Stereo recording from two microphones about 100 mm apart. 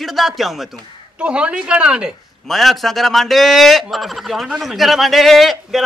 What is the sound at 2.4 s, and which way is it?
Speech, centre (ahead or behind).